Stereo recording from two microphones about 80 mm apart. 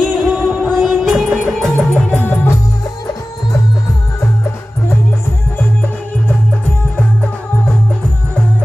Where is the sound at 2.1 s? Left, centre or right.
Left.